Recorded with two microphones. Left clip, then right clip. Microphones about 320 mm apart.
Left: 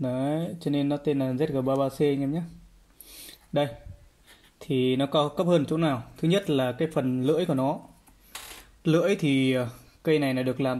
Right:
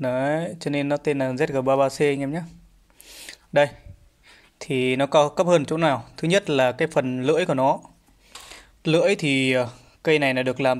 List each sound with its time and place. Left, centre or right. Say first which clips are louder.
0.0 s speech: right 6 dB; right
3.3 s a sound: right 8 dB; centre
4.6 s speech: right 3 dB; right
5.4 s speech: right 5 dB; centre
8.8 s speech: right 4 dB; centre